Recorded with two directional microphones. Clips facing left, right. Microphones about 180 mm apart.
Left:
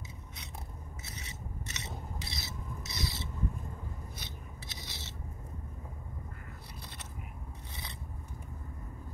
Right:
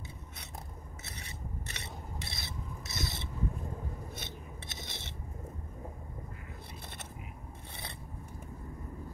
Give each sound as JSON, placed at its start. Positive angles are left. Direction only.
{"t": 1.1, "sound": "filing", "side_deg": -55}